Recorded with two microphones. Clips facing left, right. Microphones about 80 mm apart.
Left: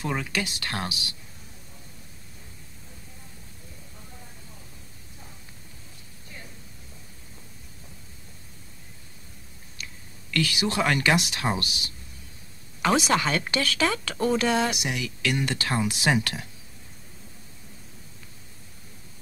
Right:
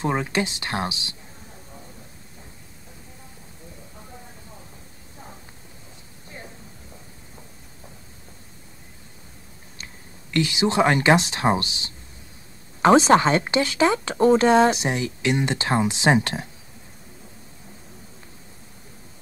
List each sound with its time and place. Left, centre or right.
0.0 s speech: right
10.3 s speech: right